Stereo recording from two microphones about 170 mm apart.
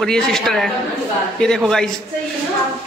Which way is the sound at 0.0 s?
5° left (ahead or behind).